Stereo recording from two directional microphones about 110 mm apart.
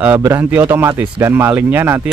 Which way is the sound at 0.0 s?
20° right (ahead or behind).